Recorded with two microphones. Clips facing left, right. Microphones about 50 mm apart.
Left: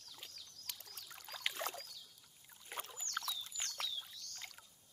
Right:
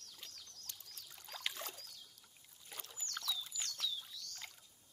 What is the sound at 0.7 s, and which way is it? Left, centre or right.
Rowboat, left.